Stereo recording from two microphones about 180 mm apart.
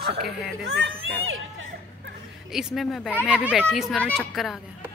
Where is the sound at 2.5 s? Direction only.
Centre (ahead or behind).